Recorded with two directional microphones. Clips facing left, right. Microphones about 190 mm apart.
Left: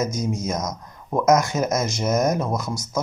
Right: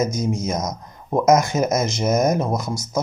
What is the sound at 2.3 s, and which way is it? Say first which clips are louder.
Speech: right 2 dB; 20° right (ahead or behind).